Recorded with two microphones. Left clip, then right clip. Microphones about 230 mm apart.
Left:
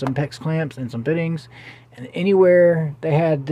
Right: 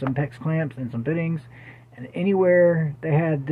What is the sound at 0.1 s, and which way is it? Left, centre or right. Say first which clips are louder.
Speech: left 3 dB; centre.